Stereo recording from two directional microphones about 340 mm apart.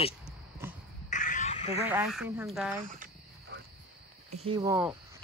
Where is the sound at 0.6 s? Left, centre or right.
Centre.